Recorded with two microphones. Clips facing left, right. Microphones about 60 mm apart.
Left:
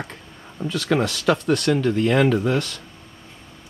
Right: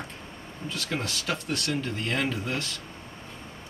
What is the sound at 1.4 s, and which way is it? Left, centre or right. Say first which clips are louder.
Speech: left 11 dB; left.